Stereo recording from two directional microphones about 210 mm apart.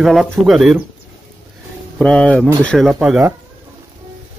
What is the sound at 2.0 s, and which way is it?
Speech, 5° left (ahead or behind).